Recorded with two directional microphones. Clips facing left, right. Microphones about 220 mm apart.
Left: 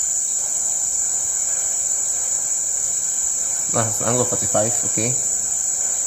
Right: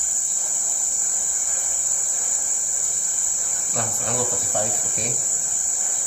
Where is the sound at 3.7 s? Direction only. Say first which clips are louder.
Left 8 dB; 65° left (ahead or behind).